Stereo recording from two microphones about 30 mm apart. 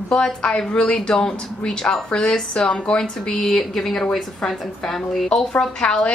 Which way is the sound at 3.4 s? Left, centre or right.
Centre.